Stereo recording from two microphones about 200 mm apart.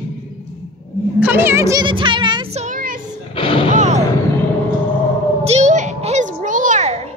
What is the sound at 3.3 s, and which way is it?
Artillery fire, 25° left (ahead or behind).